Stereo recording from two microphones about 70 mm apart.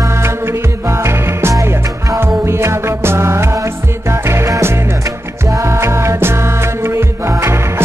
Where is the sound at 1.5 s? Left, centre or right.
Right.